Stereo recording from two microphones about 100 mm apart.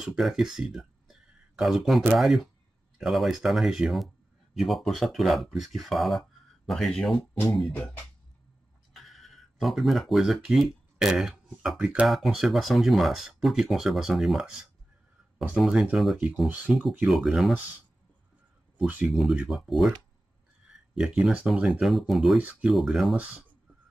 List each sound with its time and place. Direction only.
0.0 s speech: 5° right (ahead or behind)
8.9 s speech: centre (ahead or behind)
15.5 s speech: 5° right (ahead or behind)
17.1 s speech: centre (ahead or behind)
19.0 s speech: centre (ahead or behind)
21.0 s speech: 10° right (ahead or behind)
21.6 s speech: centre (ahead or behind)